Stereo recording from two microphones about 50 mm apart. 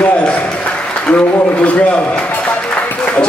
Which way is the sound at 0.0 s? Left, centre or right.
Left.